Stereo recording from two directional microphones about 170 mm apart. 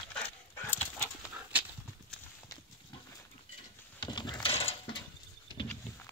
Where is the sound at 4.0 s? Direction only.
25° left (ahead or behind).